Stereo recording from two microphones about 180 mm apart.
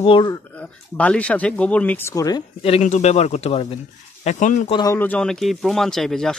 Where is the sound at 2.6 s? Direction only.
35° left (ahead or behind).